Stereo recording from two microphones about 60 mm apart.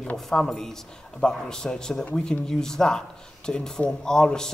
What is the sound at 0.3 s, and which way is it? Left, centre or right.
Speech, centre.